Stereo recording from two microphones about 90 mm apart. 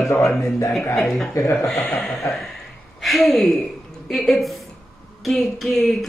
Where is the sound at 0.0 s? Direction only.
35° left (ahead or behind).